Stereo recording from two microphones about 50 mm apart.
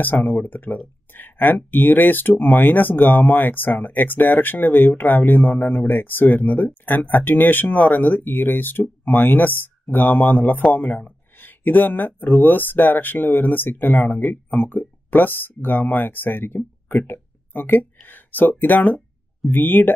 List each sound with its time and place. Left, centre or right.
0.0 s speech: left